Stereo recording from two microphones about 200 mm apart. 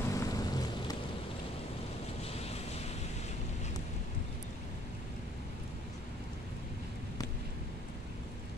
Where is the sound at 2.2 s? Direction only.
30° left (ahead or behind).